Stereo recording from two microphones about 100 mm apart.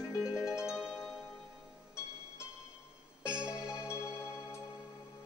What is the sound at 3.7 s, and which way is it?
Music, 25° left (ahead or behind).